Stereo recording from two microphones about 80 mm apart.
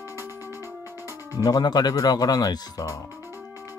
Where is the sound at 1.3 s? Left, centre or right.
Left.